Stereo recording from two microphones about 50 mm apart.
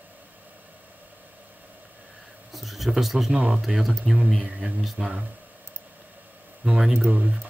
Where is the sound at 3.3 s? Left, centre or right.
Right.